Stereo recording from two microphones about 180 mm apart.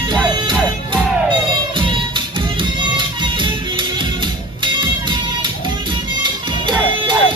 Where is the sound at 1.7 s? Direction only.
25° right (ahead or behind).